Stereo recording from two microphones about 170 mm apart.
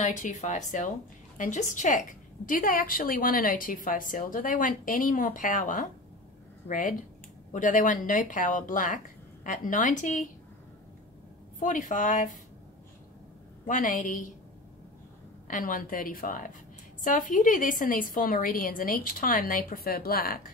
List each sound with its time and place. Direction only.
0.0 s a woman's voice: 45° left (ahead or behind)
11.6 s a woman's voice: 50° left (ahead or behind)
13.7 s a woman's voice: 50° left (ahead or behind)
15.4 s a woman's voice: 50° left (ahead or behind)